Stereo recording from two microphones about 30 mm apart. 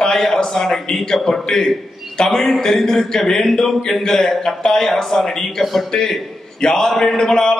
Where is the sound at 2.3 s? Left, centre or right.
Centre; by 7.6 s left.